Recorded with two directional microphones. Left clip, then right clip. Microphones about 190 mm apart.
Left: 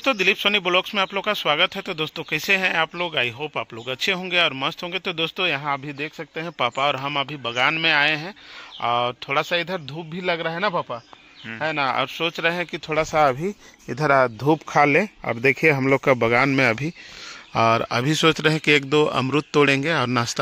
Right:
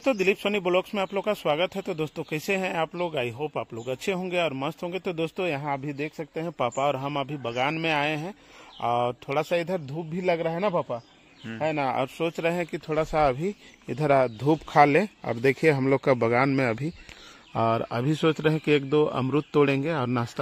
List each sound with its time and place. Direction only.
0.0 s speech: centre (ahead or behind)
12.9 s speech: 25° left (ahead or behind)
14.0 s speech: 5° left (ahead or behind)